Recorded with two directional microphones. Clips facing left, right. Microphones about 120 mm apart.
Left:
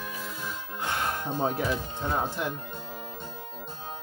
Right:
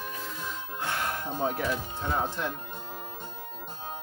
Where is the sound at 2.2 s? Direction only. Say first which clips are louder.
Left 1 dB; 10° left (ahead or behind).